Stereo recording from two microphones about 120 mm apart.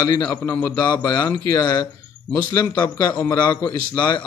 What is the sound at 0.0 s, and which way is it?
A man's voice, 30° left (ahead or behind).